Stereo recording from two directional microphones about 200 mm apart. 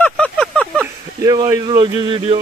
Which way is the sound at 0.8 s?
15° right (ahead or behind).